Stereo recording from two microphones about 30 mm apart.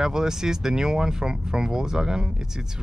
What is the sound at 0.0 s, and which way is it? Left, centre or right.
Speech, right.